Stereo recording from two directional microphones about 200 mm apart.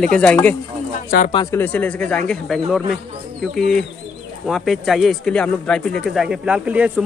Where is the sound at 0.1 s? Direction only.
5° left (ahead or behind).